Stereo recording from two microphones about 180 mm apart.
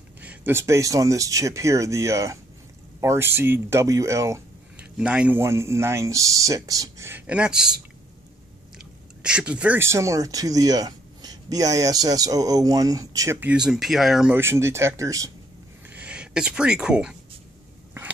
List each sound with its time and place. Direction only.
0.2 s speech: 10° right (ahead or behind)
4.9 s speech: 5° right (ahead or behind)
9.2 s speech: 5° right (ahead or behind)
15.9 s speech: 5° right (ahead or behind)